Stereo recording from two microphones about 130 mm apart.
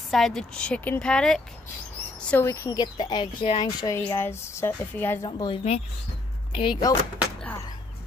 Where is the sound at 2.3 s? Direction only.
20° left (ahead or behind); by 3.6 s 35° left (ahead or behind).